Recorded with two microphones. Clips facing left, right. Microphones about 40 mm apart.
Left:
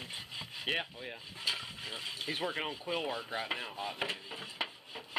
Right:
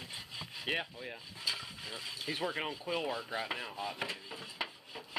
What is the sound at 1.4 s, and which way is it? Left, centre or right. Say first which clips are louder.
Speech: left 2 dB; left.